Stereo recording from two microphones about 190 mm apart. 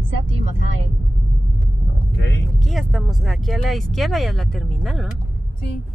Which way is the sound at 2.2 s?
65° left (ahead or behind).